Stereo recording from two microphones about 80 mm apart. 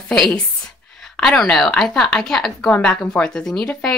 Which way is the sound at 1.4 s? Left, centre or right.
Centre.